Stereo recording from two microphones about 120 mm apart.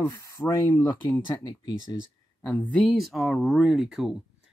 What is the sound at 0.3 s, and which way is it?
Speech, 25° left (ahead or behind).